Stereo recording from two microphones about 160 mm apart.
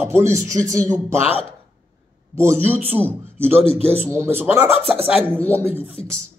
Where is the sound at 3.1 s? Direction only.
15° right (ahead or behind).